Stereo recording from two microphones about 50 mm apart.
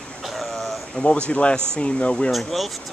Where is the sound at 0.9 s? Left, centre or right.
Left.